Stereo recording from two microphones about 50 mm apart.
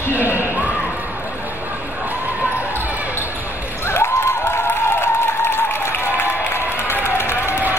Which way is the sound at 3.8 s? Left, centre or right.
Left.